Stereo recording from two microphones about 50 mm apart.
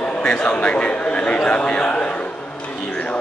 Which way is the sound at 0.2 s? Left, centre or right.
Left.